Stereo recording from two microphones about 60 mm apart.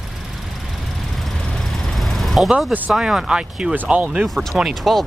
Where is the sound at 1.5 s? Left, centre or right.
Centre.